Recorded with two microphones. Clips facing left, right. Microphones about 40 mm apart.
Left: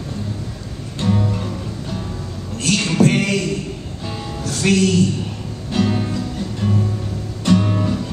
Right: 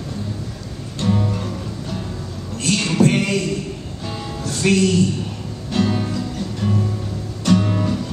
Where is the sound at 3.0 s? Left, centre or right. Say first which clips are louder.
Left 1 dB; left.